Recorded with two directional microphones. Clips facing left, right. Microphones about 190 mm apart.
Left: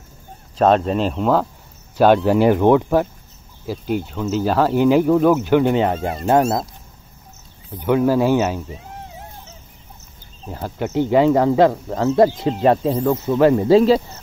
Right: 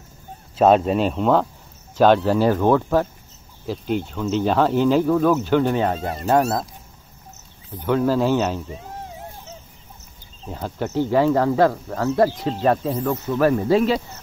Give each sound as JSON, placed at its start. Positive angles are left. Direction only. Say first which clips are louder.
{"t": 0.6, "sound": "speech", "louder": "even", "side_deg": -5}
{"t": 7.8, "sound": "speech", "louder": "left 3 dB", "side_deg": 15}
{"t": 10.4, "sound": "speech", "louder": "left 2 dB", "side_deg": 10}